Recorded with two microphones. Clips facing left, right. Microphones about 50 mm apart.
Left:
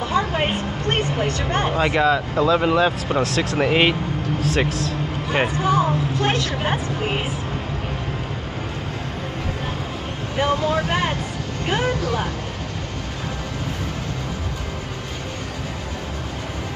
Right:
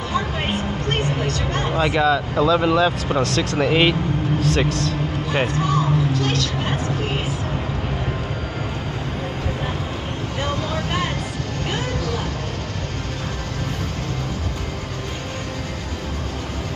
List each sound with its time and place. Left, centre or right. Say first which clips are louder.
0.8 s a sound: left 3 dB; left
1.7 s speech: right 1 dB; centre
5.8 s a woman's voice: even; left